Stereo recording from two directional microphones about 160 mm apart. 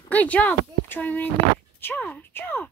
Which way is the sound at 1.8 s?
10° left (ahead or behind).